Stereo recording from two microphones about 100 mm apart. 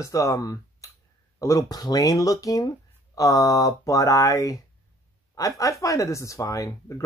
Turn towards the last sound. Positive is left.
turn(degrees=35)  # may be behind; listen again after turning